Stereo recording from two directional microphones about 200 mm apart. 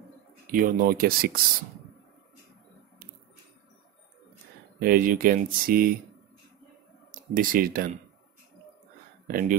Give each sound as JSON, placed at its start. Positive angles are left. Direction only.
{"t": 0.5, "sound": "speech", "side_deg": -45}
{"t": 4.7, "sound": "speech", "side_deg": -45}
{"t": 7.3, "sound": "speech", "side_deg": -45}
{"t": 9.3, "sound": "speech", "side_deg": -40}